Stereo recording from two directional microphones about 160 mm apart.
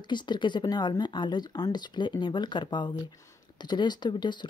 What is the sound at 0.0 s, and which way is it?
Speech, 30° left (ahead or behind).